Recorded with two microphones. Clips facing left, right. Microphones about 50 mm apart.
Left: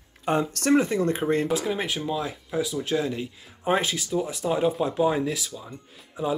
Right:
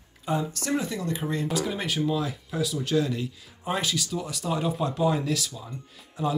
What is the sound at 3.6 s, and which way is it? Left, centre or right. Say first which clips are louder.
Speech: left 4 dB; left.